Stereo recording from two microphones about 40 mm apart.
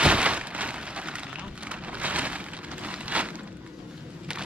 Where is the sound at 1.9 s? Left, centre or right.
Right.